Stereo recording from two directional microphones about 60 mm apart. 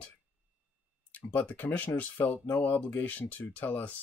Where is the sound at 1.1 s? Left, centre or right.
Left.